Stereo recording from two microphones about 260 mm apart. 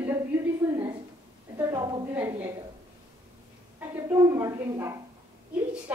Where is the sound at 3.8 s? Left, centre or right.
Centre.